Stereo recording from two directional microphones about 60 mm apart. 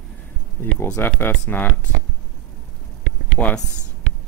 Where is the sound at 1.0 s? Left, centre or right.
Left.